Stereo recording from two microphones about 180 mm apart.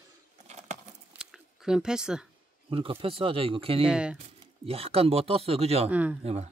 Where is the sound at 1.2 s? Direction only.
Centre (ahead or behind).